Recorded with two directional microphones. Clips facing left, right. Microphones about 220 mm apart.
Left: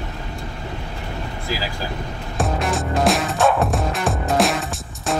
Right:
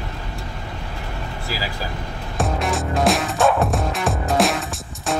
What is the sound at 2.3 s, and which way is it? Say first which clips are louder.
Music: even; centre (ahead or behind).